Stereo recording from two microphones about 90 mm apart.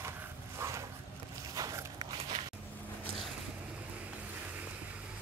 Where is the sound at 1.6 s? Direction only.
40° right (ahead or behind).